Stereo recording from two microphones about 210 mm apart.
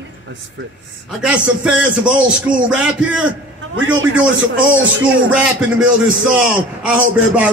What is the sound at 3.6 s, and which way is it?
A man's voice, 65° right (ahead or behind).